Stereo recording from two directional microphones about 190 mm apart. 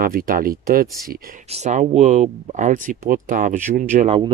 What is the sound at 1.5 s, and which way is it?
Speech, 40° right (ahead or behind).